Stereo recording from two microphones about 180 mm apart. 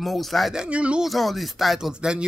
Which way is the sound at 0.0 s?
Centre (ahead or behind).